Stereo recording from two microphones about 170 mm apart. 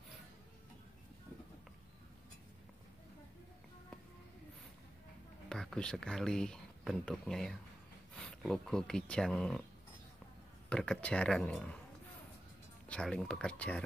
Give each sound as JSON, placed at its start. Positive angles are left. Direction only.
{"t": 5.5, "sound": "speech", "side_deg": 5}
{"t": 10.7, "sound": "speech", "side_deg": 5}
{"t": 12.8, "sound": "speech", "side_deg": 5}